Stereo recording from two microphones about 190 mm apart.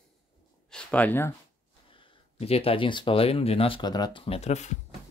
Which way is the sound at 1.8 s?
25° left (ahead or behind).